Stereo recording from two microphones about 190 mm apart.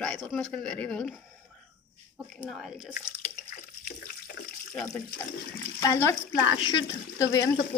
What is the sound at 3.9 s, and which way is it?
Water, 55° left (ahead or behind).